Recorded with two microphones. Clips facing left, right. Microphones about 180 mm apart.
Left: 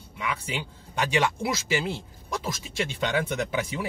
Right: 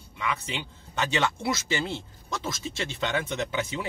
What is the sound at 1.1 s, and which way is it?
A man's voice, 15° left (ahead or behind).